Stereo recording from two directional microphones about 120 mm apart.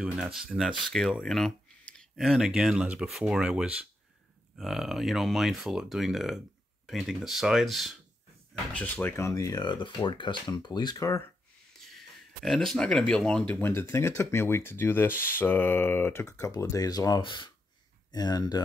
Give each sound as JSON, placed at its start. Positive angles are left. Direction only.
{"t": 0.0, "sound": "speech", "side_deg": -5}
{"t": 8.7, "sound": "speech", "side_deg": 10}
{"t": 12.4, "sound": "speech", "side_deg": 5}
{"t": 13.6, "sound": "speech", "side_deg": 20}